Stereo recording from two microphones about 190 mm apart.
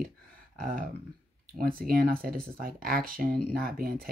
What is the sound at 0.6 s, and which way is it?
Speech, 45° right (ahead or behind).